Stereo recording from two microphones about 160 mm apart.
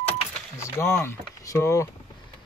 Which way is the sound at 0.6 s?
15° left (ahead or behind).